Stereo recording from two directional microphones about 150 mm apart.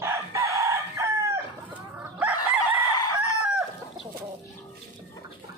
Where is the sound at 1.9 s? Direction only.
10° right (ahead or behind).